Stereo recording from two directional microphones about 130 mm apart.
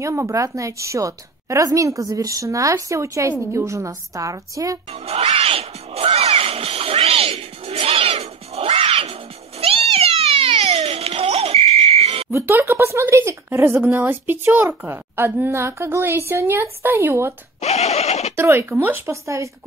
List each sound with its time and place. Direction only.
0.0 s a woman's voice: 20° right (ahead or behind)
5.0 s music: 50° right (ahead or behind)
9.6 s cat: 50° right (ahead or behind)
12.3 s a woman's voice: 20° right (ahead or behind)
17.6 s speech: 60° left (ahead or behind)
18.3 s a woman's voice: 20° right (ahead or behind)